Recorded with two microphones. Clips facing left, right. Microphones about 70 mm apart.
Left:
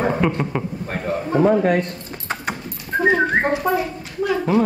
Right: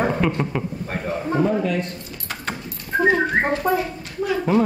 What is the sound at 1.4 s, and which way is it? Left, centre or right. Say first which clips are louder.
Speech: left 6 dB; left.